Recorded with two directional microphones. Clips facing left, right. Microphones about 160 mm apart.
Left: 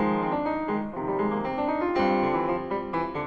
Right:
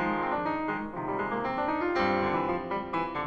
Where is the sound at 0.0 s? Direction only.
30° left (ahead or behind).